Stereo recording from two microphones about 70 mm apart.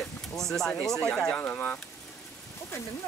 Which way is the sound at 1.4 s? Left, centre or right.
Left.